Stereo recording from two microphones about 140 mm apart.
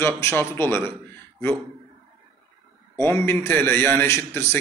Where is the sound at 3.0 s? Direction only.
15° left (ahead or behind).